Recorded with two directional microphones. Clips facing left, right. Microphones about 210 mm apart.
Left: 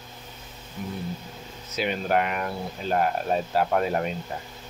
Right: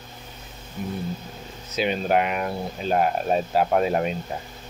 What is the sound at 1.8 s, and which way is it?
Speech, 20° right (ahead or behind).